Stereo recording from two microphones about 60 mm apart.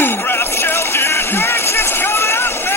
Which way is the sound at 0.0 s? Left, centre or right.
Left.